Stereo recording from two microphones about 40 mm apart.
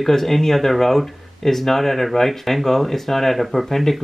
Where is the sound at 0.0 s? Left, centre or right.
Centre.